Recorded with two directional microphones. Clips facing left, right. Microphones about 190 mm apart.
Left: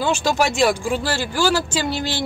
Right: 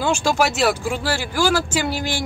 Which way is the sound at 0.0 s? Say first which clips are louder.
Even; 10° right (ahead or behind).